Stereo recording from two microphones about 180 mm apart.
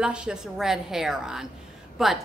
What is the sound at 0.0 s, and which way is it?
A woman's voice, 5° right (ahead or behind).